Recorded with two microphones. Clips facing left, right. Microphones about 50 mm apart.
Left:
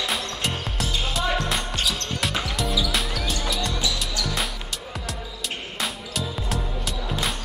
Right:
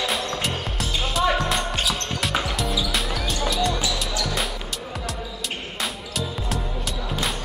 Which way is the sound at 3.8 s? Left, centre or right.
Centre.